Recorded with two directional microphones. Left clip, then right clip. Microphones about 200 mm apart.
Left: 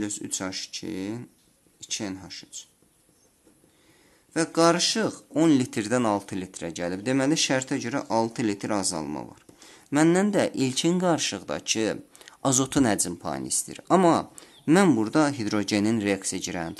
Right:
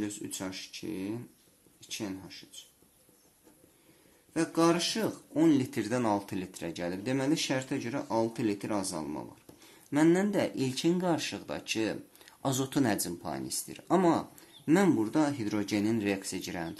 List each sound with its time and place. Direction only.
0.0 s speech: 40° left (ahead or behind)
4.3 s speech: 40° left (ahead or behind)